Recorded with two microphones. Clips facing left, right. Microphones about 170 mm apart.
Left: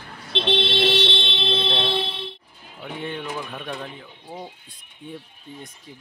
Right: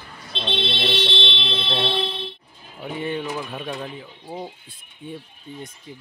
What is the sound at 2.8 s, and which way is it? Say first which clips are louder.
Speech: right 4 dB; 5° right (ahead or behind).